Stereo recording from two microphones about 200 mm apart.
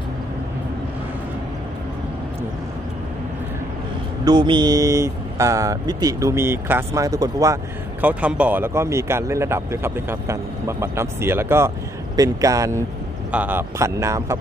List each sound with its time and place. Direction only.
4.2 s speech: 20° right (ahead or behind)
8.0 s speech: 5° right (ahead or behind)